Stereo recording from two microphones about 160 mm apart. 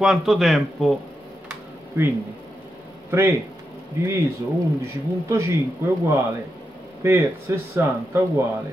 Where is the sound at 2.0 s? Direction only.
15° right (ahead or behind).